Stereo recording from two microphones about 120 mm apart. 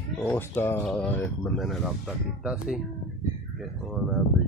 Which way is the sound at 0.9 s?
5° left (ahead or behind).